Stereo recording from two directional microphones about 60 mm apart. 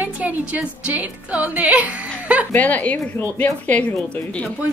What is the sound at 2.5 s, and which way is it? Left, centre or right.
Speech, left.